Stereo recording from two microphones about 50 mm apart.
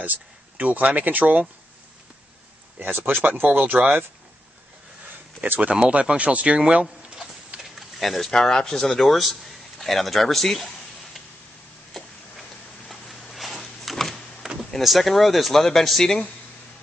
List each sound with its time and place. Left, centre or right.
0.0 s speech: right
3.1 s speech: right
5.4 s speech: right
7.6 s a sound: centre
8.3 s a man's voice: centre
11.9 s a sound: centre
14.8 s a man's voice: centre